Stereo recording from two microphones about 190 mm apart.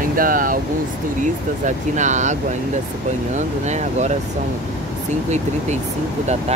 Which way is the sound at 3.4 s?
40° right (ahead or behind).